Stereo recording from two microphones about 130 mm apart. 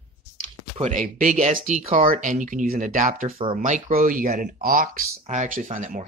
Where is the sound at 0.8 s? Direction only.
80° right.